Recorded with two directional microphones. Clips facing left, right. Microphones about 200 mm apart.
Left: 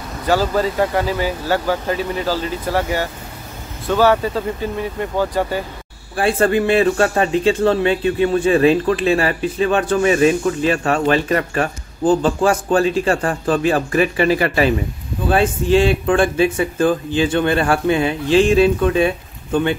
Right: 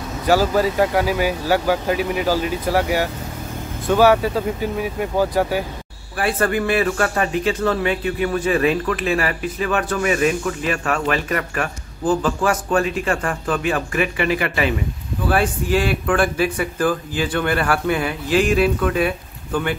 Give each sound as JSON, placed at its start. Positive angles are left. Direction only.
{"t": 0.3, "sound": "speech", "side_deg": -10}
{"t": 6.1, "sound": "speech", "side_deg": 25}
{"t": 15.2, "sound": "speech", "side_deg": 25}